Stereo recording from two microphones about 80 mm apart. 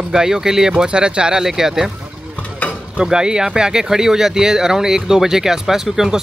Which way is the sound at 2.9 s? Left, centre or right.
Centre.